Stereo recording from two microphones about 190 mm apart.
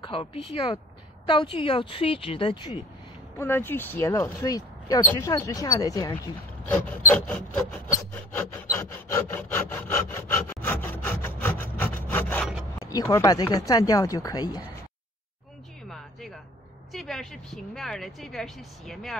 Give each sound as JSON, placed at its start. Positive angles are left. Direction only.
{"t": 0.0, "sound": "speech", "side_deg": 30}
{"t": 3.3, "sound": "speech", "side_deg": 10}
{"t": 6.6, "sound": "speech", "side_deg": 10}
{"t": 7.7, "sound": "rub", "side_deg": 10}
{"t": 12.7, "sound": "speech", "side_deg": 20}
{"t": 15.9, "sound": "music", "side_deg": 0}
{"t": 16.9, "sound": "speech", "side_deg": 0}